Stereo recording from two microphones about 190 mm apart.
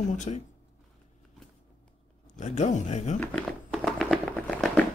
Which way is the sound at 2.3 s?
40° left (ahead or behind).